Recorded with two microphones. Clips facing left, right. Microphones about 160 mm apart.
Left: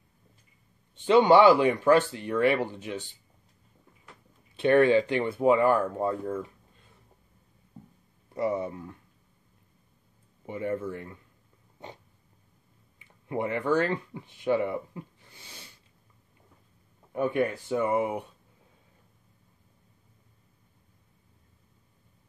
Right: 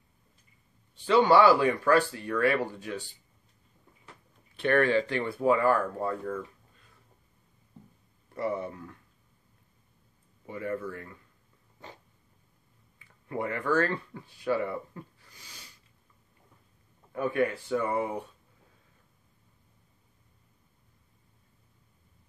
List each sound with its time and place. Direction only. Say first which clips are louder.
0.9 s speech: left 3 dB; 20° left (ahead or behind)
4.6 s speech: left 4 dB; 20° left (ahead or behind)
8.4 s speech: left 3 dB; 20° left (ahead or behind)
10.4 s speech: left 3 dB; 25° left (ahead or behind)
13.0 s speech: left 3 dB; 20° left (ahead or behind)
17.1 s speech: left 1 dB; 20° left (ahead or behind)